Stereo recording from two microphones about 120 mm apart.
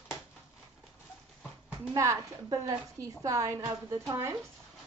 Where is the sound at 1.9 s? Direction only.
25° right (ahead or behind).